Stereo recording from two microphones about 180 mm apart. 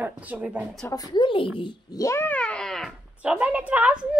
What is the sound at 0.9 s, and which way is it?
Speech, 20° left (ahead or behind).